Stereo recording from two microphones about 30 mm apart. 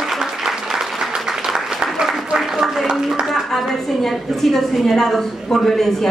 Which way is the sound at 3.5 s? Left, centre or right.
Centre.